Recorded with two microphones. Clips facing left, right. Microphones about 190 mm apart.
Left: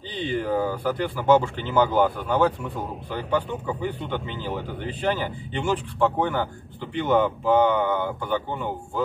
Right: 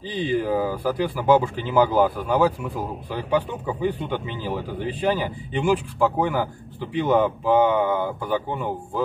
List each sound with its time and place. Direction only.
0.3 s speech: 5° right (ahead or behind)